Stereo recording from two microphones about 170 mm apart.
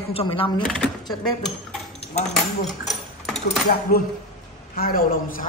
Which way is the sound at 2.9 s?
Centre (ahead or behind).